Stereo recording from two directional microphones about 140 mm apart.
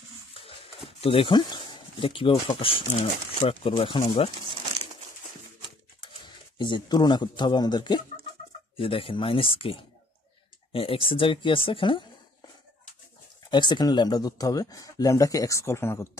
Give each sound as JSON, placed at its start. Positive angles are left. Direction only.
{"t": 0.4, "sound": "speech", "side_deg": 40}
{"t": 6.2, "sound": "speech", "side_deg": 35}
{"t": 13.5, "sound": "speech", "side_deg": 30}